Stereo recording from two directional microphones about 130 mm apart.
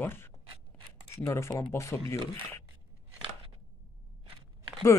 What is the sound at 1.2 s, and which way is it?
Speech, 20° left (ahead or behind).